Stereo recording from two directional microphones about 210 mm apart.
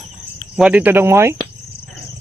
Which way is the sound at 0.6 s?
5° right (ahead or behind).